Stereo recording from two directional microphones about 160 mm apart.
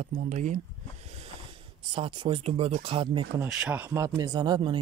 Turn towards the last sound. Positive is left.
turn(degrees=-25)  # may be behind; listen again after turning